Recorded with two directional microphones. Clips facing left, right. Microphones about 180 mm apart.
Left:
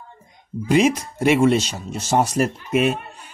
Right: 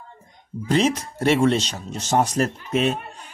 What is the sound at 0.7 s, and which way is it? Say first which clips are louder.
Speech: left 3 dB; 10° left (ahead or behind).